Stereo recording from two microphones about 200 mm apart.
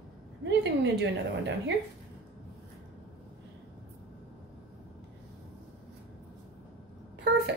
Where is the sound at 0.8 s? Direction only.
60° right (ahead or behind).